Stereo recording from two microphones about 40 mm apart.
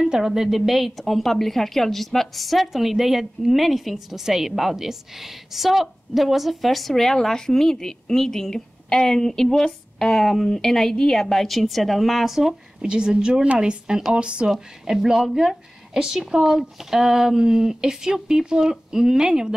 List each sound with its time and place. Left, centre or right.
0.1 s a woman's voice: centre
12.8 s a woman's voice: right
14.5 s speech: centre